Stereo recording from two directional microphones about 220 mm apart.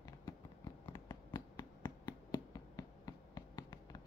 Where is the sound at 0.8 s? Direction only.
15° left (ahead or behind).